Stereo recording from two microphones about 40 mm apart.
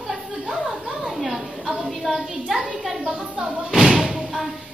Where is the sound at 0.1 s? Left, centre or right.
Centre.